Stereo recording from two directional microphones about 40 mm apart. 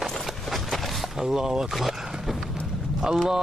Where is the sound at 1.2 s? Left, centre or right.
Centre.